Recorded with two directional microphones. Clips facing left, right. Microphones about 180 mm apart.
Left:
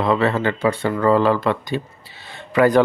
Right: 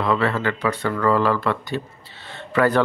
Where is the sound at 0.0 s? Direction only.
25° left (ahead or behind).